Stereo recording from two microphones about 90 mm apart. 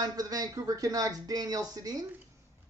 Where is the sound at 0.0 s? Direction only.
45° right (ahead or behind).